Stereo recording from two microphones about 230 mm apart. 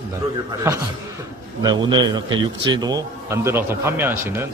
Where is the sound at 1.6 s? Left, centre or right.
Centre.